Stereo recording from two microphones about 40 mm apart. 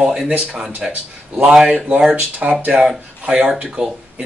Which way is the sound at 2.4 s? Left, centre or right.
Right.